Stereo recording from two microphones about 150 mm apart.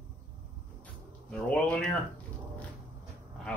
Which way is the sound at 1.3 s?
5° left (ahead or behind).